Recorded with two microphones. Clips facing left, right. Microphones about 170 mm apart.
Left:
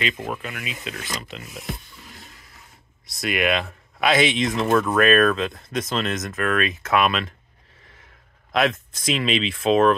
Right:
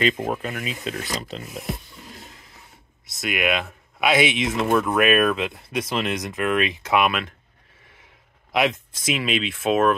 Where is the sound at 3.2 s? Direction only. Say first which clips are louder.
Left 1 dB; 5° right (ahead or behind).